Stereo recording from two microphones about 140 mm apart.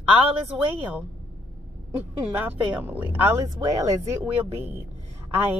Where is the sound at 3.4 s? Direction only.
25° right (ahead or behind).